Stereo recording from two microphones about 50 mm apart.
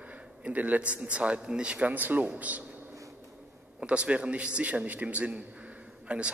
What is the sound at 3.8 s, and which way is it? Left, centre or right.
A man's voice, right.